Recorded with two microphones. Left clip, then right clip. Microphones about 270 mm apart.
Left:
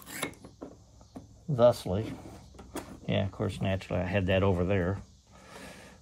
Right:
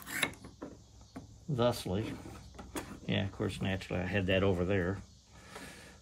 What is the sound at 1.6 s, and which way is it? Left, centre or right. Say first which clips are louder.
Speech: left 8 dB; centre.